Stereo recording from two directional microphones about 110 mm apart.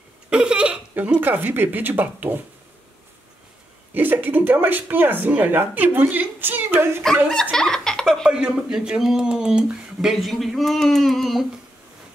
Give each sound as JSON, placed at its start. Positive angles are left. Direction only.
{"t": 0.3, "sound": "speech", "side_deg": -10}
{"t": 3.9, "sound": "speech", "side_deg": -15}
{"t": 7.5, "sound": "laughter", "side_deg": 5}
{"t": 8.2, "sound": "speech", "side_deg": -5}